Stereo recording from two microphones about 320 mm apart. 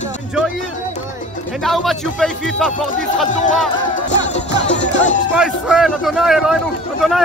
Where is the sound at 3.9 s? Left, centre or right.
Left.